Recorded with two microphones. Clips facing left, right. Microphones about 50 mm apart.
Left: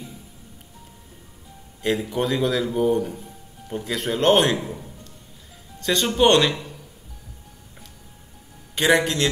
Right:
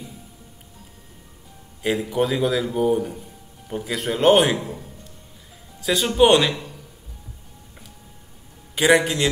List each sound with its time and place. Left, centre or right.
1.8 s a man's voice: centre
5.8 s a man's voice: centre
8.7 s a man's voice: centre